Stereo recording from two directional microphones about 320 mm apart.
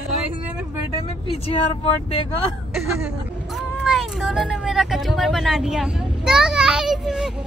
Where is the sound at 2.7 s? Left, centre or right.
Centre.